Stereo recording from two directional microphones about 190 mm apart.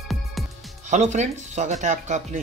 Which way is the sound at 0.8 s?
40° right (ahead or behind).